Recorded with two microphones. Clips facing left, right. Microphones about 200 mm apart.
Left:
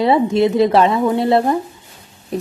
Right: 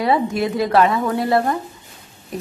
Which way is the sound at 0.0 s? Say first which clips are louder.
Left 5 dB; 25° left (ahead or behind).